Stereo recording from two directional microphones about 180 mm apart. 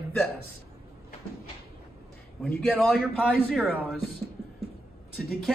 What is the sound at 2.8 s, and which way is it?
Speech, centre (ahead or behind).